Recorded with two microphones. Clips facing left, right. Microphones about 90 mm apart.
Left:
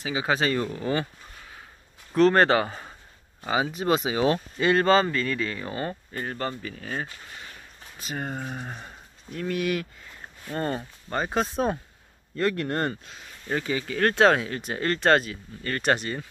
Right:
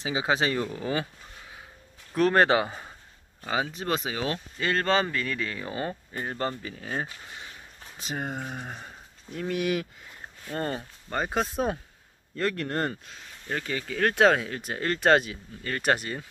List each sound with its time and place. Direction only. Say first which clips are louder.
0.0 s speech: left 1 dB; 20° right (ahead or behind)
0.6 s speech: left 2 dB; 5° right (ahead or behind)
2.1 s speech: left 2 dB; 10° right (ahead or behind)
3.4 s speech: left 4 dB; 5° left (ahead or behind)
4.2 s speech: left 7 dB; 20° left (ahead or behind)
4.8 s speech: left 4 dB; centre (ahead or behind)
6.2 s speech: even; 25° right (ahead or behind)
8.4 s speech: left 1 dB; 5° right (ahead or behind)
9.3 s speech: left 1 dB; 20° right (ahead or behind)
10.4 s speech: left 2 dB; 5° left (ahead or behind)